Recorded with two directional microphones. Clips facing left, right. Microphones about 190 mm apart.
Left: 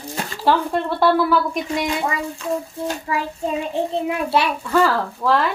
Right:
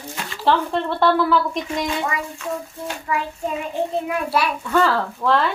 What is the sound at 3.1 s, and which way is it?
Child singing, 30° left (ahead or behind).